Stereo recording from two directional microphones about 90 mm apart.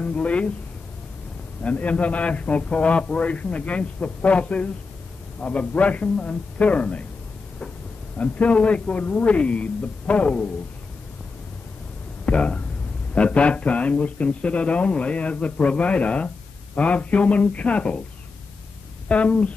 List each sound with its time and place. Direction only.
0.0 s speech: 15° left (ahead or behind)
1.6 s speech: 15° left (ahead or behind)
8.2 s speech: 15° left (ahead or behind)
12.3 s speech: 15° left (ahead or behind)
19.0 s speech: 15° left (ahead or behind)